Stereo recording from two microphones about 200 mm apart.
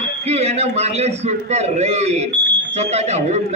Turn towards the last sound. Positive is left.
turn(degrees=-35)  # may be behind; listen again after turning